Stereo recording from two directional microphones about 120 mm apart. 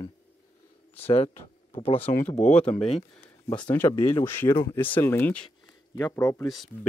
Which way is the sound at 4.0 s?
45° left (ahead or behind).